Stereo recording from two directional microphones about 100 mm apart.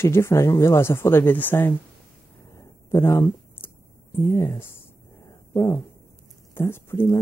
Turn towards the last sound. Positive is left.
turn(degrees=25)  # may be behind; listen again after turning